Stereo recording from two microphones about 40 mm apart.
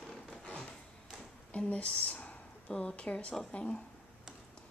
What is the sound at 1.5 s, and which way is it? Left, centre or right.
A woman's voice, left.